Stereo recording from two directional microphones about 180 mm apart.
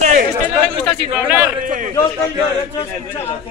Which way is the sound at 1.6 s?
50° right (ahead or behind).